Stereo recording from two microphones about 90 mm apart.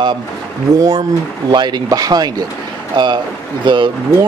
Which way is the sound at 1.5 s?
60° right (ahead or behind).